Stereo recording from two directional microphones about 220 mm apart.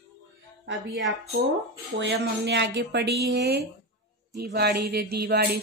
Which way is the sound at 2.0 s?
50° right (ahead or behind).